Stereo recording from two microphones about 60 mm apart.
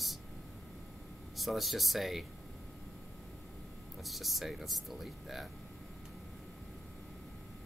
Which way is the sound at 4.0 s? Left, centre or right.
Centre.